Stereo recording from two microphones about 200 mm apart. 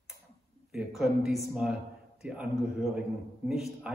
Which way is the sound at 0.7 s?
Centre (ahead or behind).